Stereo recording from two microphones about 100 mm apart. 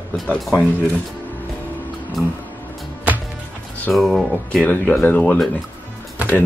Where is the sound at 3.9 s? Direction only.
Centre (ahead or behind).